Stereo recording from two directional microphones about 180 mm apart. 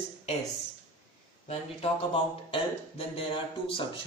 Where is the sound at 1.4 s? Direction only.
35° left (ahead or behind).